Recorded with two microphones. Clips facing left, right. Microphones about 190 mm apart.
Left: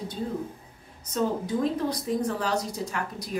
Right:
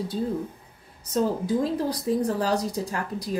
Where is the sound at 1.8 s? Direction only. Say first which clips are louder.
Right 2 dB; 35° right (ahead or behind).